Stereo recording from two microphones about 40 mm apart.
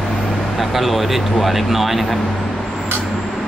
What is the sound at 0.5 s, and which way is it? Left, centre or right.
Speech, centre.